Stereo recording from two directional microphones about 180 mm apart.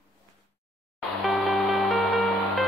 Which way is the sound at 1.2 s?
Centre (ahead or behind).